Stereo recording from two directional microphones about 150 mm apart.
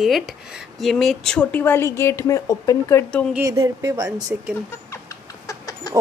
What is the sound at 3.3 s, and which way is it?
Speech, 20° right (ahead or behind).